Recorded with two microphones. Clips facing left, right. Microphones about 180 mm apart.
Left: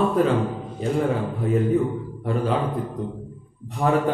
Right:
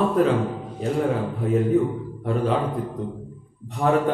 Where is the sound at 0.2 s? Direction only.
Centre (ahead or behind).